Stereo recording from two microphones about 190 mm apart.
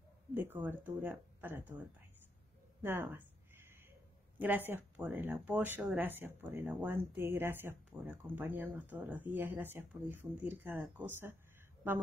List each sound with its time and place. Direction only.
0.3 s speech: 10° right (ahead or behind)
2.8 s a sound: 10° right (ahead or behind)
4.4 s speech: 10° right (ahead or behind)